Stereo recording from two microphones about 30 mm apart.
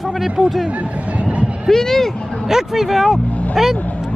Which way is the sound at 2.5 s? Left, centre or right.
Centre.